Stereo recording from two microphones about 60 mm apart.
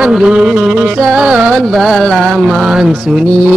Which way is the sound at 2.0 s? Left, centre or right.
Centre.